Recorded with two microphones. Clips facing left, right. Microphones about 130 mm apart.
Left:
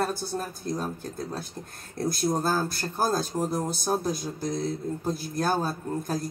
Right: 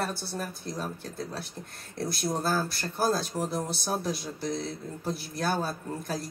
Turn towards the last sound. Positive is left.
turn(degrees=45)  # may be behind; listen again after turning